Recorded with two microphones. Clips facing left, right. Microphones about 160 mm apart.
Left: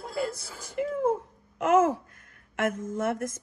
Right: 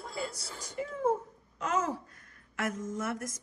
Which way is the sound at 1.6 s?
50° left (ahead or behind).